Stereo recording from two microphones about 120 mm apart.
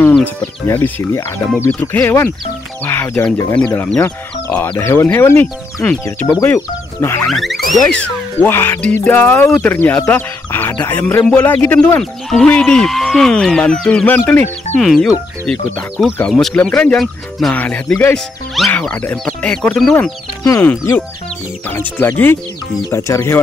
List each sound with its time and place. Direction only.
0.0 s speech: 10° left (ahead or behind)
6.4 s speech: 20° left (ahead or behind)
7.2 s speech: centre (ahead or behind)
7.9 s speech: 15° left (ahead or behind)
12.0 s speech: 5° left (ahead or behind)
14.8 s speech: centre (ahead or behind)
18.1 s speech: centre (ahead or behind)
20.6 s speech: 20° left (ahead or behind)